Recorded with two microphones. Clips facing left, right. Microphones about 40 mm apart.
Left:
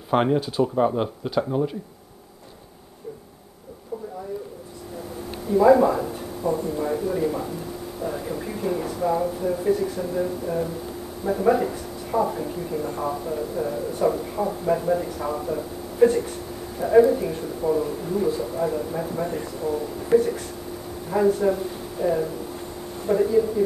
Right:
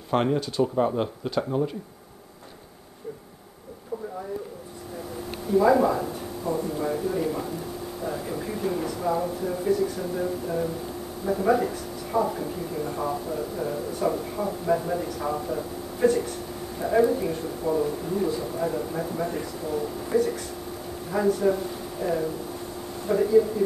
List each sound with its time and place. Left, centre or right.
0.1 s speech: centre
5.5 s a man's voice: centre
20.1 s speech: left
21.5 s a man's voice: centre